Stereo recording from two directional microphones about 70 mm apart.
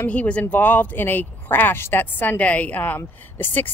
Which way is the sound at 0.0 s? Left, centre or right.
Left.